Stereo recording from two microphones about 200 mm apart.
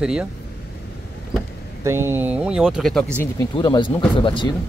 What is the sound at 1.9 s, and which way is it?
Speech, 15° right (ahead or behind).